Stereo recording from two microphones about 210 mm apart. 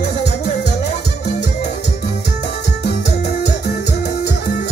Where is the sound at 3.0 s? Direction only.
55° left (ahead or behind).